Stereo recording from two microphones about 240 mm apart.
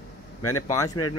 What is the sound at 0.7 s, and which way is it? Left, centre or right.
Speech, centre.